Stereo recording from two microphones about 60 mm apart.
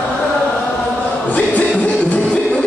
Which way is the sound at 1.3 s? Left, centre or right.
Left.